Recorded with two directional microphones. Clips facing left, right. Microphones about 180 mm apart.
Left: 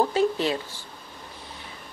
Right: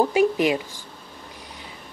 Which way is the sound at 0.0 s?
15° right (ahead or behind).